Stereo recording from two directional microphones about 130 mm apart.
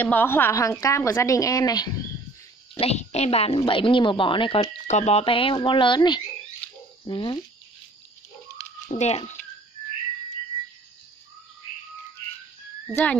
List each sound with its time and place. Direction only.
0.0 s a woman's voice: 15° left (ahead or behind)
2.8 s a woman's voice: 55° left (ahead or behind); by 4.6 s 40° left (ahead or behind)
4.8 s speech: 60° left (ahead or behind); by 7.3 s 40° left (ahead or behind)
8.9 s speech: 60° left (ahead or behind)
12.9 s speech: 10° left (ahead or behind)